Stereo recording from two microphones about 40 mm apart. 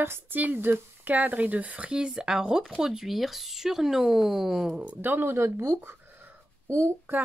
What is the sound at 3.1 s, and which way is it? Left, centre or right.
Speech, centre.